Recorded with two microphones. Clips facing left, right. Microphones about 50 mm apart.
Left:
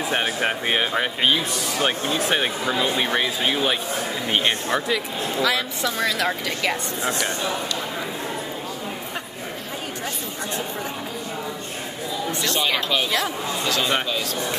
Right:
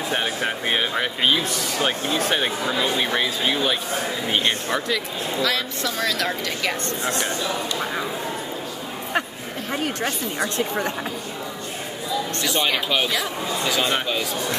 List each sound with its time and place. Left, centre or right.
0.1 s speech: centre
12.4 s speech: centre